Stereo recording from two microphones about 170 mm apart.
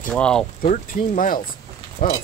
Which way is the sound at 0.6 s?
55° left (ahead or behind).